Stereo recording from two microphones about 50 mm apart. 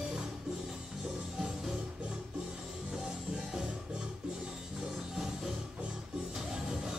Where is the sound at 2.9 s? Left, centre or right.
Centre.